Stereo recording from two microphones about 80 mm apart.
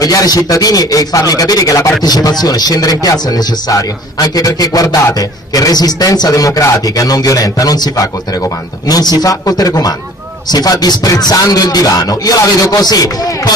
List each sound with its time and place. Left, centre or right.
0.0 s speech: left